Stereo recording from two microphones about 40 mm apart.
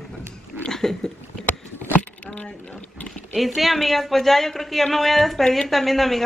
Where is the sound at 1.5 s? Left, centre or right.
Left.